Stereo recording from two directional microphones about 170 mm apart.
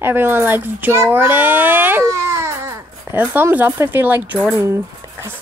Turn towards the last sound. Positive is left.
turn(degrees=-15)  # may be behind; listen again after turning